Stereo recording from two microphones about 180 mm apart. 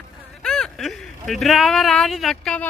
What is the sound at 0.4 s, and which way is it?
Speech, 5° left (ahead or behind).